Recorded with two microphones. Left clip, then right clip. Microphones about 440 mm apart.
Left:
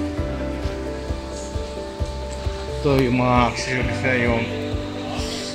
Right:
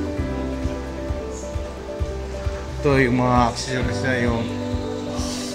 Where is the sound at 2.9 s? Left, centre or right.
Centre.